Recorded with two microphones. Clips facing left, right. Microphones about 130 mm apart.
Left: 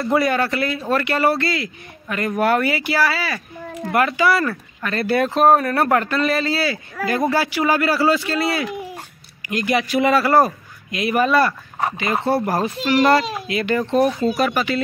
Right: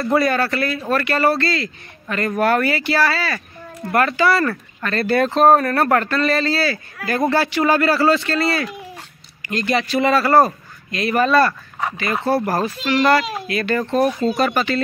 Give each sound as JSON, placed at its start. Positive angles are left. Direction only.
{"t": 0.1, "sound": "a man's voice", "side_deg": 15}
{"t": 2.9, "sound": "speech", "side_deg": 5}
{"t": 7.2, "sound": "speech", "side_deg": 5}
{"t": 8.9, "sound": "speech", "side_deg": 15}
{"t": 12.0, "sound": "a man's voice", "side_deg": 20}
{"t": 12.4, "sound": "speech", "side_deg": 0}
{"t": 12.6, "sound": "a man's voice", "side_deg": 25}
{"t": 14.4, "sound": "speech", "side_deg": 5}